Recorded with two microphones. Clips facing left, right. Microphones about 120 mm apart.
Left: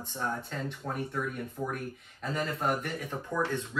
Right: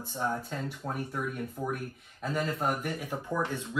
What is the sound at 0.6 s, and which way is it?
Speech, 5° right (ahead or behind).